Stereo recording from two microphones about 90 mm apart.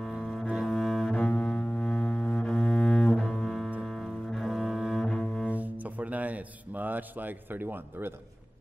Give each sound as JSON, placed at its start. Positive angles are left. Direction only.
{"t": 0.0, "sound": "double bass", "side_deg": 0}
{"t": 5.5, "sound": "speech", "side_deg": -15}